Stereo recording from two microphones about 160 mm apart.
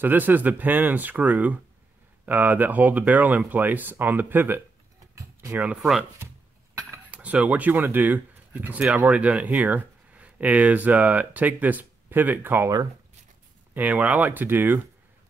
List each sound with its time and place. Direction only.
0.0 s speech: 10° right (ahead or behind)
5.1 s a sound: 20° right (ahead or behind)
5.7 s speech: centre (ahead or behind)